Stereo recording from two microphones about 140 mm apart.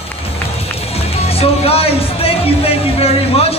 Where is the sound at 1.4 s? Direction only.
45° left (ahead or behind).